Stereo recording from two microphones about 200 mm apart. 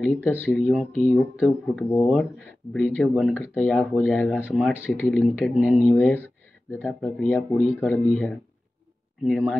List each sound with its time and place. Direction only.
0.0 s speech: 5° left (ahead or behind)